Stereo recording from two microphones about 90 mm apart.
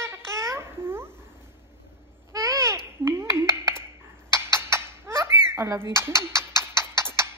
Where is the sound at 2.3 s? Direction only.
35° right (ahead or behind).